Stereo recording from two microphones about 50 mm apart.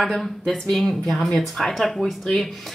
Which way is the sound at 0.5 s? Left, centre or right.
Centre.